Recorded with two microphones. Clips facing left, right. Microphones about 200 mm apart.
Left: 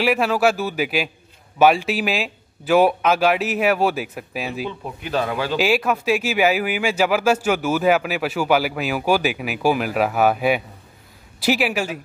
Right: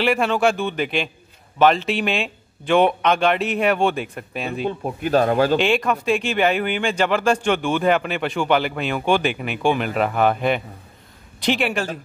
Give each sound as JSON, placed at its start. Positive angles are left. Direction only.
{"t": 0.0, "sound": "speech", "side_deg": 5}
{"t": 4.6, "sound": "speech", "side_deg": -45}
{"t": 5.6, "sound": "a man's voice", "side_deg": 5}